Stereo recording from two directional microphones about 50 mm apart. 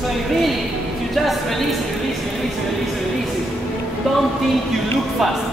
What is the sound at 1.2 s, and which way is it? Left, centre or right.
Speech, centre.